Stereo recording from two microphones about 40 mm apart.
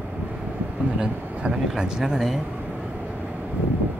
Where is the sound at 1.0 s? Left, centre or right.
Centre.